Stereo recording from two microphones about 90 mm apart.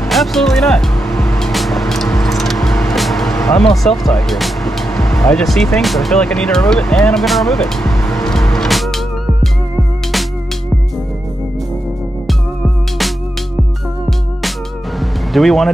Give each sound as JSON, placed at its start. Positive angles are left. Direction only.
{"t": 0.1, "sound": "music", "side_deg": 0}
{"t": 2.1, "sound": "vehicle", "side_deg": 0}
{"t": 3.7, "sound": "speech", "side_deg": 0}
{"t": 15.0, "sound": "music", "side_deg": 0}